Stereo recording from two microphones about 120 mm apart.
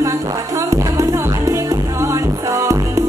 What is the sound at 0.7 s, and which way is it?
Music, 25° right (ahead or behind).